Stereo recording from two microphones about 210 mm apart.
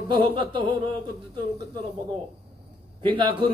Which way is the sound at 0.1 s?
25° right (ahead or behind).